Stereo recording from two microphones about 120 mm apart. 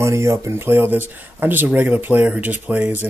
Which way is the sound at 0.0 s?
25° right (ahead or behind).